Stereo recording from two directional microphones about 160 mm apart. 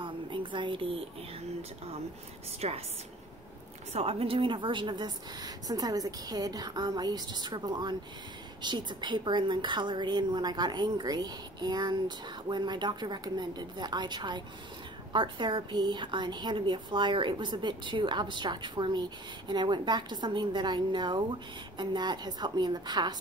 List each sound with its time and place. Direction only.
0.0 s a sound: 30° right (ahead or behind)
2.6 s a woman's voice: 40° right (ahead or behind)
3.9 s a woman's voice: 40° right (ahead or behind)